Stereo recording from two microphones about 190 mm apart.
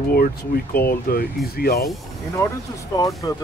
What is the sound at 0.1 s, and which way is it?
Speech, 55° left (ahead or behind).